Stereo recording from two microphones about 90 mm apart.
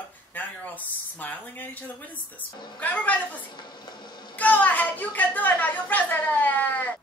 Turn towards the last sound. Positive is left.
turn(degrees=20)  # may be behind; listen again after turning